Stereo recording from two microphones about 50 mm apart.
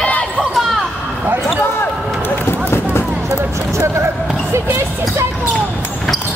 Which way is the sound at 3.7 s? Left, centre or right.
Right.